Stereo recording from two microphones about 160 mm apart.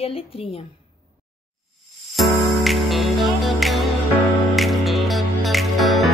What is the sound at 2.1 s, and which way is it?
Music, centre (ahead or behind).